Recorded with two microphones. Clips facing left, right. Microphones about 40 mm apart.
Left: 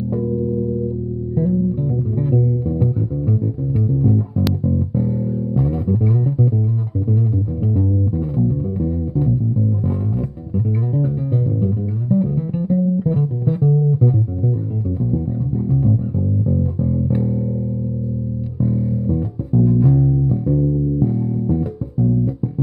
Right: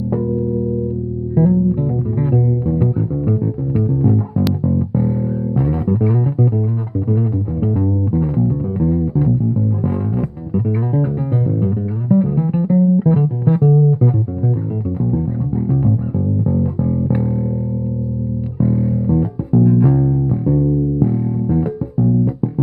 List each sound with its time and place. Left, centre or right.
1.3 s music: right
7.6 s music: right
18.6 s music: right
20.4 s music: right